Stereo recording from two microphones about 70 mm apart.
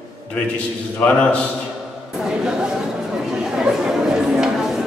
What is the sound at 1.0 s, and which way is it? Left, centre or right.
Speech, centre.